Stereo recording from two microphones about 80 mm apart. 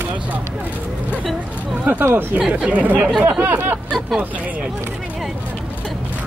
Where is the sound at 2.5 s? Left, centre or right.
Centre.